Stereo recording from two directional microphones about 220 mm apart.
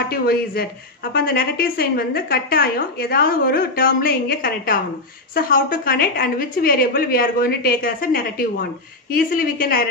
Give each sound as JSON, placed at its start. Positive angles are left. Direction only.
{"t": 0.1, "sound": "a woman's voice", "side_deg": 45}